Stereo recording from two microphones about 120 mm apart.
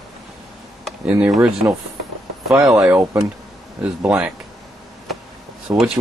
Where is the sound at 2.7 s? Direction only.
25° right (ahead or behind).